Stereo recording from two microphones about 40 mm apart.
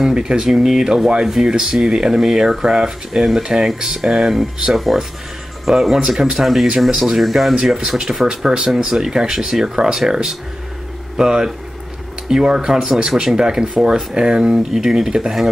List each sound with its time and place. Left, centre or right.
0.0 s speech: centre
8.5 s speech: centre
14.6 s speech: centre